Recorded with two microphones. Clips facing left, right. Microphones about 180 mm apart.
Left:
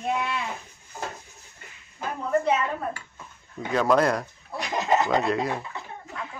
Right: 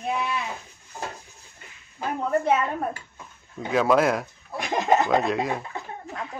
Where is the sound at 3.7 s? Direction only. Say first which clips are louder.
Right 1 dB; 5° right (ahead or behind).